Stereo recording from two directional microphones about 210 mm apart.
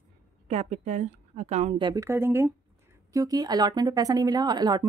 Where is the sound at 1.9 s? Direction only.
15° right (ahead or behind).